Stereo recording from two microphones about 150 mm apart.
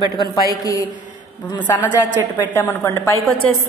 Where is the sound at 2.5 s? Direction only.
15° left (ahead or behind).